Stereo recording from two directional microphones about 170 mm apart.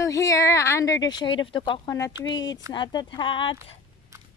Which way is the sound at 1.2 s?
30° left (ahead or behind).